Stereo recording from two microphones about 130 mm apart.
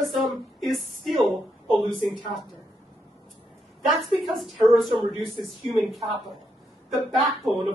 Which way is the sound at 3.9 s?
Centre (ahead or behind).